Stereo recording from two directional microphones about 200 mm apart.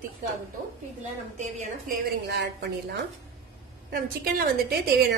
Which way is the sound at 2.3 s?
55° right (ahead or behind).